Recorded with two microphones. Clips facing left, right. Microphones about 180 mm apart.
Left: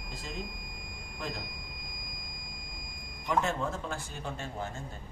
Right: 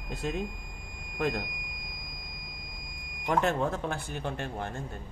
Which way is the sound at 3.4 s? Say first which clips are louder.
Right 5 dB; 60° right (ahead or behind).